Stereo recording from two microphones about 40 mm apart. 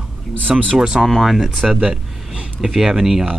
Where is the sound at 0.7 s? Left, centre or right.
Centre.